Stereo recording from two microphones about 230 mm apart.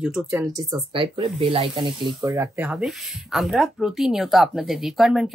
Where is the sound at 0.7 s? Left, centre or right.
Right.